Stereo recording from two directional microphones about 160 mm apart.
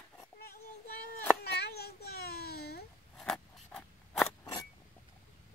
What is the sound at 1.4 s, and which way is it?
Baby cry, 85° left.